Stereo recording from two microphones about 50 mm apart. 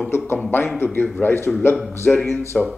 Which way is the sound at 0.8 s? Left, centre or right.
Left.